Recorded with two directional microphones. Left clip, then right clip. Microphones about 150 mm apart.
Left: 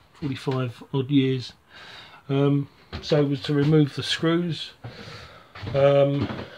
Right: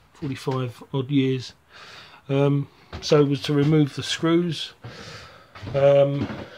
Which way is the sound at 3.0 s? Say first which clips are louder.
Right 4 dB; 35° right (ahead or behind).